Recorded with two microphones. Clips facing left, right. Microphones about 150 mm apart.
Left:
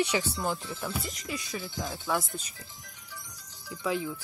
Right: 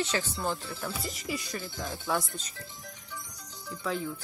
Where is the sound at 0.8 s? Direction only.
Centre (ahead or behind).